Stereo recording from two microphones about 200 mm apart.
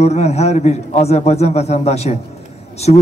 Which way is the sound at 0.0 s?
35° left (ahead or behind).